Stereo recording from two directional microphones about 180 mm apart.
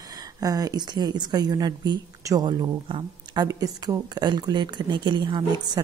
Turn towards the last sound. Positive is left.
turn(degrees=-25)  # may be behind; listen again after turning